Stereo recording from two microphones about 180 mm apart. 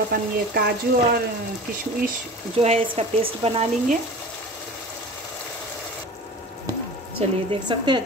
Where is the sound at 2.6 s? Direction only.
35° right (ahead or behind).